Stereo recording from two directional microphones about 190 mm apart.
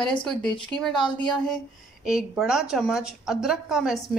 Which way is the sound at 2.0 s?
5° right (ahead or behind).